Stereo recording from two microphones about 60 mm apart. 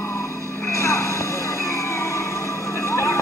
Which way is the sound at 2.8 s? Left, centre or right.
Left.